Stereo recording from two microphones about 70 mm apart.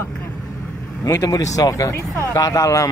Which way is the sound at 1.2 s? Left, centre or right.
Left.